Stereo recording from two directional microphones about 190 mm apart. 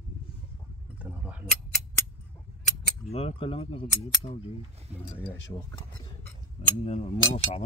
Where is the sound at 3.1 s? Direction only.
30° left (ahead or behind).